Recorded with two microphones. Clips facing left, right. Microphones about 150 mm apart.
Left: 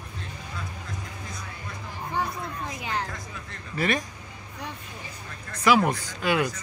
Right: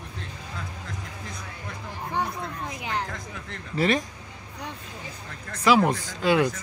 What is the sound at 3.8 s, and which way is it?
Speech, 25° right (ahead or behind).